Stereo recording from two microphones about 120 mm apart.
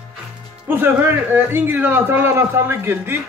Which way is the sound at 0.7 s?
20° right (ahead or behind).